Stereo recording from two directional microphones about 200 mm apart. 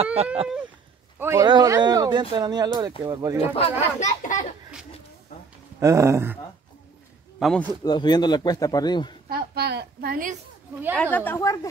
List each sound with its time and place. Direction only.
0.0 s speech: 30° right (ahead or behind)
1.2 s speech: 15° right (ahead or behind)
3.5 s speech: 35° left (ahead or behind)
5.8 s a sound: 15° right (ahead or behind)
7.3 s a man's voice: 5° left (ahead or behind)
7.8 s speech: 20° left (ahead or behind)
9.3 s a woman's voice: 50° right (ahead or behind)
11.0 s a woman's voice: 10° left (ahead or behind)